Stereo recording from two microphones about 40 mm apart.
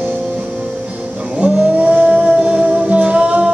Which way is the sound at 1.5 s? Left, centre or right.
Centre.